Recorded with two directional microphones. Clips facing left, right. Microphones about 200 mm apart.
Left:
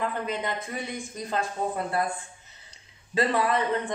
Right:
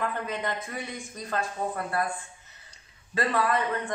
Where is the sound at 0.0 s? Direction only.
20° left (ahead or behind).